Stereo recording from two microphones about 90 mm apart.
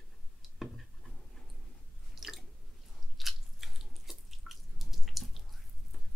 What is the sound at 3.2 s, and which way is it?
Drip, centre (ahead or behind).